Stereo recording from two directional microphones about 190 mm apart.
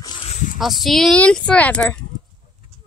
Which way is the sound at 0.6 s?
Centre (ahead or behind).